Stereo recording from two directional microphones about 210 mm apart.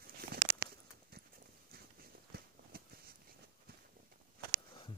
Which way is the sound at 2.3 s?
45° right (ahead or behind).